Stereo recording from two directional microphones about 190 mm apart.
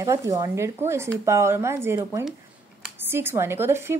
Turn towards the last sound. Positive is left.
turn(degrees=-10)  # may be behind; listen again after turning